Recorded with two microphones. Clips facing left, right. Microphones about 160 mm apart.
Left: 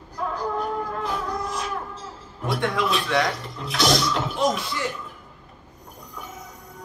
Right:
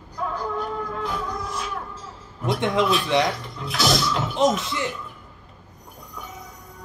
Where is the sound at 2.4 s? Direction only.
20° right (ahead or behind).